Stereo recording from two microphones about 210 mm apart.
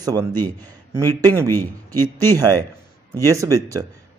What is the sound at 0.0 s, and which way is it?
Speech, 15° right (ahead or behind).